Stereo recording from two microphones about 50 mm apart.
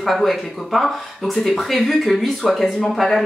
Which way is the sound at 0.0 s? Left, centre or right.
Centre.